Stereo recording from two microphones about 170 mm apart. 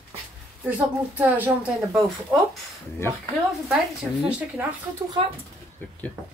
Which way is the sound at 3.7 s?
5° right (ahead or behind).